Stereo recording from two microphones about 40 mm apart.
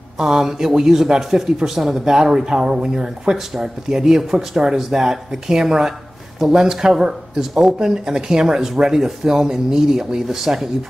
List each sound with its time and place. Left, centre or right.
0.2 s a man's voice: centre